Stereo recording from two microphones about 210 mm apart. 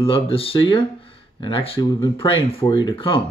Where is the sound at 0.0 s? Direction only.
25° left (ahead or behind).